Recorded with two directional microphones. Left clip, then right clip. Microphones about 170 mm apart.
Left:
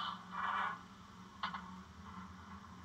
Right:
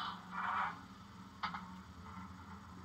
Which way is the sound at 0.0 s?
25° left (ahead or behind).